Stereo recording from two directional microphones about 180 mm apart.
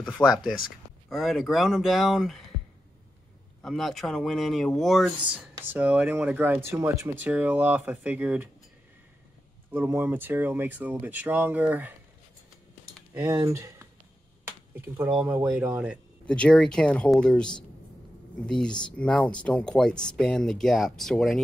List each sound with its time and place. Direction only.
0.2 s speech: centre (ahead or behind)
3.6 s speech: centre (ahead or behind)
9.7 s speech: 10° right (ahead or behind)
13.1 s speech: 15° right (ahead or behind)
16.3 s speech: 5° left (ahead or behind)
18.5 s speech: 5° left (ahead or behind)